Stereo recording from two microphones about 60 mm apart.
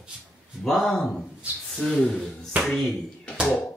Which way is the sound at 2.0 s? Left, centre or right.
Left.